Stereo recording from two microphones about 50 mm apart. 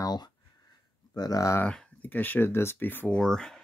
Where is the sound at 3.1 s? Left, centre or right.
Centre.